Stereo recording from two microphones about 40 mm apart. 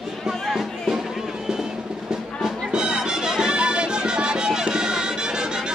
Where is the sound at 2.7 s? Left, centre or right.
Centre.